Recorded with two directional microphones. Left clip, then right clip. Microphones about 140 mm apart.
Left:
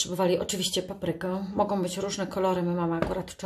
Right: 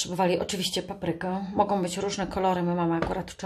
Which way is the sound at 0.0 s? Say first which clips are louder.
Even; 20° right (ahead or behind).